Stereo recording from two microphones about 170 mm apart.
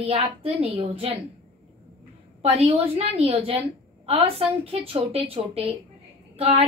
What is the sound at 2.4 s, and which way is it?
A woman's voice, 35° right (ahead or behind).